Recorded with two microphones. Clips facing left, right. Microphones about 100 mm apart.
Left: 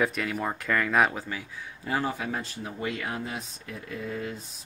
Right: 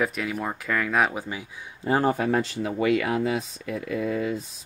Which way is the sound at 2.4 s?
90° right.